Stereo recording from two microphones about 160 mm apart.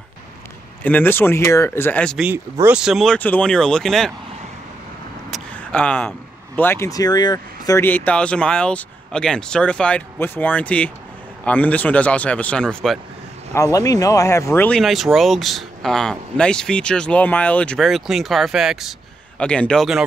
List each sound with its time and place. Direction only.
0.8 s speech: 10° left (ahead or behind)
2.1 s speech: 10° right (ahead or behind)
5.3 s speech: 5° left (ahead or behind)
13.5 s speech: 20° left (ahead or behind)
14.8 s speech: centre (ahead or behind)